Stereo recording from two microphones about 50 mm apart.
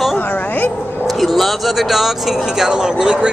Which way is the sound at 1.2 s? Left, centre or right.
Centre.